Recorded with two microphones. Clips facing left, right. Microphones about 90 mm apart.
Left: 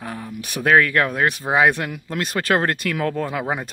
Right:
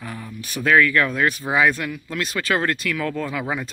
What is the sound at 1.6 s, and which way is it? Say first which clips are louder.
Speech: left 2 dB; 60° left (ahead or behind).